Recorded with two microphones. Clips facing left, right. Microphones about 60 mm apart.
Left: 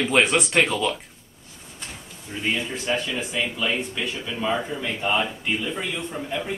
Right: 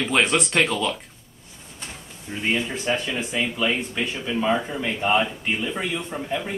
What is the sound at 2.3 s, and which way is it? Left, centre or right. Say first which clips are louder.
Speech: right 2 dB; centre.